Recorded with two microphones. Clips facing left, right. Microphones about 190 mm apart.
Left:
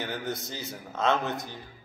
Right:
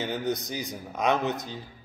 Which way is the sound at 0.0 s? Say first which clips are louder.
Right 4 dB; 20° right (ahead or behind).